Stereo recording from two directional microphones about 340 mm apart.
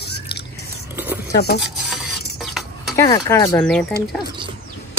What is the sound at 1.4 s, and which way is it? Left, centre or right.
Speech, left.